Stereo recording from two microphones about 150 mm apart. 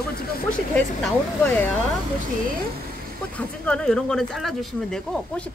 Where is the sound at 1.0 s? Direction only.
10° left (ahead or behind).